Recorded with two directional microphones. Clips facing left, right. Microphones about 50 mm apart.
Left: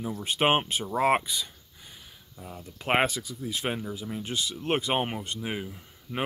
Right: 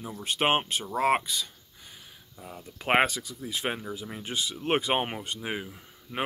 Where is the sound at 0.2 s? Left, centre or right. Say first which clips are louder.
Left 1 dB; centre.